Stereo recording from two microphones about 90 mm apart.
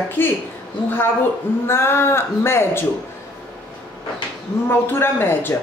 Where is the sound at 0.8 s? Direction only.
25° left (ahead or behind).